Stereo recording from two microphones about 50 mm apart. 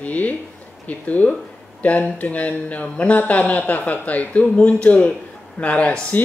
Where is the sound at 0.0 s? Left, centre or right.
Left.